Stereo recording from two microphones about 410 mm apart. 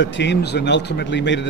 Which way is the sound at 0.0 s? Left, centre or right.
Left.